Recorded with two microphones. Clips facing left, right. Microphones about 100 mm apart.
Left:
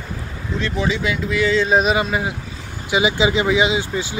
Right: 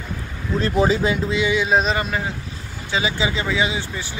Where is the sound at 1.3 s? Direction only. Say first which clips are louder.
Left 2 dB; 15° right (ahead or behind).